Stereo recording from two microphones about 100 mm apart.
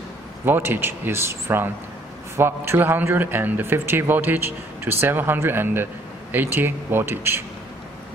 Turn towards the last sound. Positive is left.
turn(degrees=-20)  # may be behind; listen again after turning